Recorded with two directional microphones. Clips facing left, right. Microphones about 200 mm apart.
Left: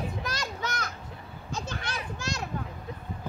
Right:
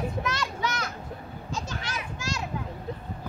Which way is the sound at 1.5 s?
55° left (ahead or behind).